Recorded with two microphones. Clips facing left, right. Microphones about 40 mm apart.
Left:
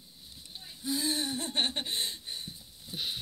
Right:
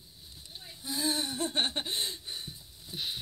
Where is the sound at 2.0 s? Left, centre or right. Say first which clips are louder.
Even; right.